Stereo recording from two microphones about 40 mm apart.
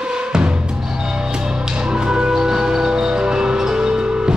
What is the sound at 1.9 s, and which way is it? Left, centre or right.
Music, right.